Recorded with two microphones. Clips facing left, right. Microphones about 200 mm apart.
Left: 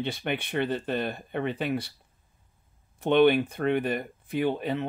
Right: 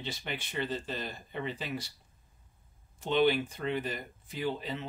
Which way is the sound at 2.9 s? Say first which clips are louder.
Left 7 dB; 60° left (ahead or behind).